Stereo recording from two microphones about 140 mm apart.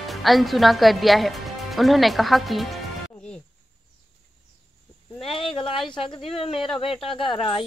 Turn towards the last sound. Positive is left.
turn(degrees=35)  # may be behind; listen again after turning